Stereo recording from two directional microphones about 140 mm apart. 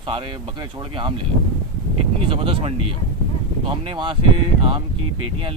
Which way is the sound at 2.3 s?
45° right (ahead or behind).